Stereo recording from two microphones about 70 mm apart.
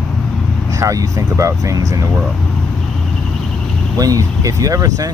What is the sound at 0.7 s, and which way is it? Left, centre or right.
Speech, right.